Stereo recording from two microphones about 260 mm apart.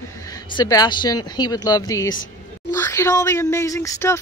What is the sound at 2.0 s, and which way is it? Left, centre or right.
Speech, left.